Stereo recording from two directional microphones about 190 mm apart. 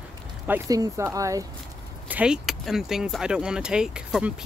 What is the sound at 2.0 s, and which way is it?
Speech, 5° right (ahead or behind).